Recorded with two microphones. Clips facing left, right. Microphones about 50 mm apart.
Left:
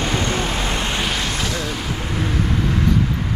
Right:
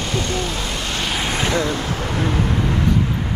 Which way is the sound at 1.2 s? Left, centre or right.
Right.